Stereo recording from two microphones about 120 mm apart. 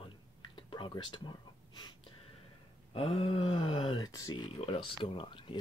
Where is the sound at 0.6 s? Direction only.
45° left (ahead or behind).